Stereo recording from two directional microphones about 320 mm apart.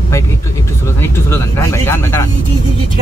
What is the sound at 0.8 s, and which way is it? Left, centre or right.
Speech, centre.